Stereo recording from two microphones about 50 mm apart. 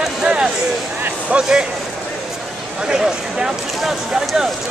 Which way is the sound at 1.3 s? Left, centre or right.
Centre.